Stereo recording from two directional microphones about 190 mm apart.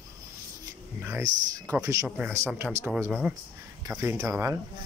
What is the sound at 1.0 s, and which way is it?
Speech, 15° right (ahead or behind).